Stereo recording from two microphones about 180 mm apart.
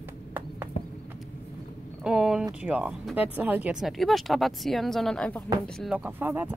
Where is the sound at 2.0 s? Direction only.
5° right (ahead or behind).